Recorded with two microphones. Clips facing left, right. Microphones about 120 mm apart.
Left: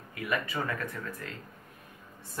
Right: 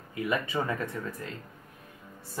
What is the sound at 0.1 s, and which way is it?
Speech, 20° right (ahead or behind).